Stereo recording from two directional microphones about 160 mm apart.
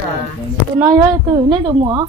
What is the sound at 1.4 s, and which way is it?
Speech, 30° right (ahead or behind).